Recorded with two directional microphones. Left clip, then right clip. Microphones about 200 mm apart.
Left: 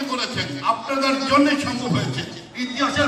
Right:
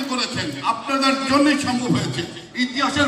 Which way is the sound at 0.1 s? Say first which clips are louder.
Right 2 dB; 30° right (ahead or behind).